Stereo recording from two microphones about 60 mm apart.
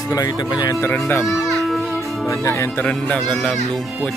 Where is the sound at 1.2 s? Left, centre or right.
Centre.